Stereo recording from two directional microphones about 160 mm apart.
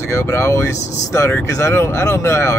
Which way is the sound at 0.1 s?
15° left (ahead or behind).